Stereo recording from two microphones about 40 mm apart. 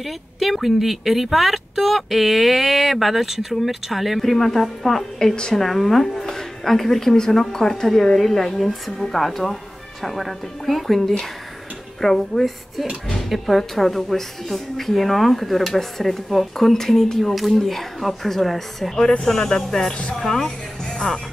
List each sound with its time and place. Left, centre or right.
0.0 s speech: centre
5.3 s a woman's voice: centre
5.6 s speech: centre